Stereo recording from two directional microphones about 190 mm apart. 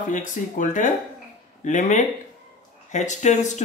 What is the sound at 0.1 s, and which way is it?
Speech, 40° left (ahead or behind).